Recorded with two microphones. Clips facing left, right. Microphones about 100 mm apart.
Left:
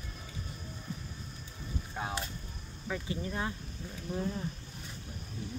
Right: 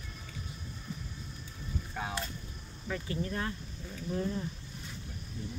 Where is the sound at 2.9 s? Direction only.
15° left (ahead or behind).